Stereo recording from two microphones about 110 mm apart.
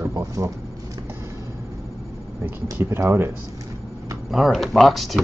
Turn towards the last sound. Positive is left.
turn(degrees=0)  # may be behind; listen again after turning